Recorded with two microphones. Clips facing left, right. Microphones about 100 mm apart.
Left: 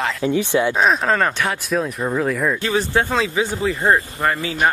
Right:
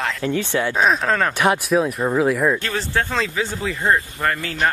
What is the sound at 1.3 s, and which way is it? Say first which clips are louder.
Speech: right 4 dB; 15° right (ahead or behind).